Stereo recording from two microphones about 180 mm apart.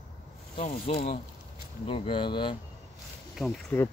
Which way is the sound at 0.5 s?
40° left (ahead or behind).